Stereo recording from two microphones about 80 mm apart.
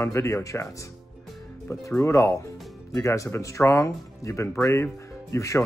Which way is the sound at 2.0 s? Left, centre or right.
Left.